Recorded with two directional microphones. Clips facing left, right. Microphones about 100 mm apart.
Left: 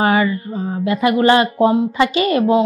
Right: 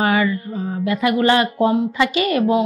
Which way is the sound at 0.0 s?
30° left (ahead or behind).